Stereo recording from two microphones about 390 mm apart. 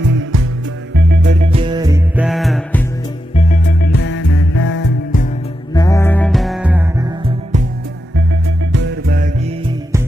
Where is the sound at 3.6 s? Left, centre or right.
Left.